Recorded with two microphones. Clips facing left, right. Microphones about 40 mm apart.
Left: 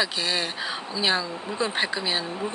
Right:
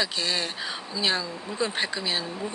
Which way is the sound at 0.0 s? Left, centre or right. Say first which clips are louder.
Left 2 dB; centre.